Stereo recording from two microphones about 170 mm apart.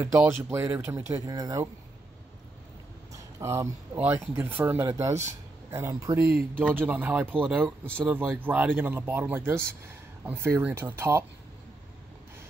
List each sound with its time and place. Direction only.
0.0 s speech: 15° right (ahead or behind)
3.1 s speech: 15° right (ahead or behind)